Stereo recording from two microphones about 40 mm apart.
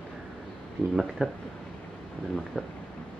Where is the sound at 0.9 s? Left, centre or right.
Centre.